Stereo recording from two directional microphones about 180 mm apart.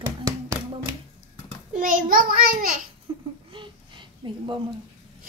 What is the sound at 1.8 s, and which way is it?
Child singing, 45° right (ahead or behind).